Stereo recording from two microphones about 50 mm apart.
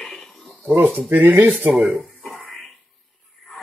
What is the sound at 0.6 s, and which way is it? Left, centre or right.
Speech, right.